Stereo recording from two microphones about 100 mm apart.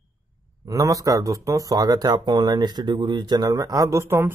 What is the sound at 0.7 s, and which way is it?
Speech, 35° right (ahead or behind).